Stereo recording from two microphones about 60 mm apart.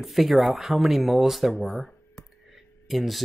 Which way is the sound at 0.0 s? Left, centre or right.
Centre.